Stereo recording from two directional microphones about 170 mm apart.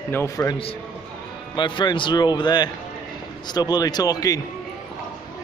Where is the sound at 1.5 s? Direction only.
25° left (ahead or behind).